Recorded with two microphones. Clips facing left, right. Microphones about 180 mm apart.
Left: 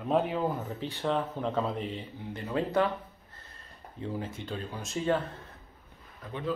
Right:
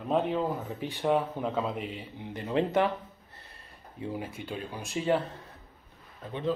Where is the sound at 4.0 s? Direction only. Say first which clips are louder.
Even; 15° right (ahead or behind).